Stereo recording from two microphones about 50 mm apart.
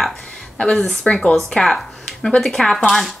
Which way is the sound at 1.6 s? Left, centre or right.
Centre.